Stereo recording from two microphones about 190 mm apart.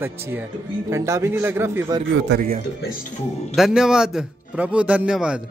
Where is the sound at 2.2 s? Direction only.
55° right (ahead or behind).